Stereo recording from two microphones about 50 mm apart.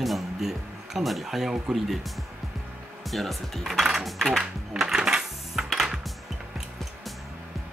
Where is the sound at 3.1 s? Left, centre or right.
Centre.